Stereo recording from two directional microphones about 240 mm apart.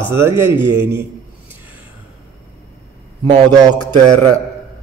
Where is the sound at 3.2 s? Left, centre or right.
Right.